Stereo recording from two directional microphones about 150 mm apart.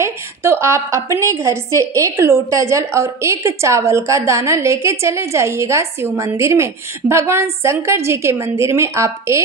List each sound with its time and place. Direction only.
0.0 s a woman's voice: 15° right (ahead or behind)